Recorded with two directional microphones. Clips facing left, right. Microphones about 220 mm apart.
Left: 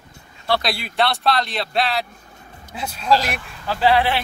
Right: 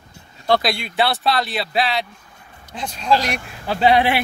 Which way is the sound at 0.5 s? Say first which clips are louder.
Right 1 dB; 5° left (ahead or behind).